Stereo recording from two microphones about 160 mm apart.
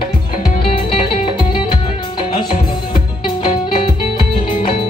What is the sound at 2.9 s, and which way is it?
Music, 30° left (ahead or behind).